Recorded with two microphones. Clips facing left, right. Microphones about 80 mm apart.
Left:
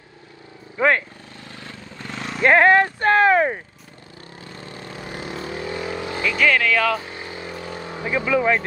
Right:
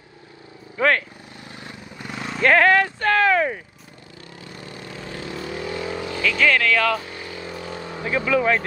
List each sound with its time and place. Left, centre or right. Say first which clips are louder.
0.7 s speech: left 1 dB; centre
1.5 s vehicle: even; centre
2.4 s speech: left 2 dB; left
4.4 s vehicle: left 1 dB; left
6.4 s speech: left 1 dB; centre
7.0 s vehicle: left 1 dB; left